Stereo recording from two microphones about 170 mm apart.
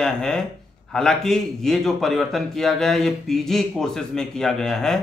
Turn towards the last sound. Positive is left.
turn(degrees=0)  # may be behind; listen again after turning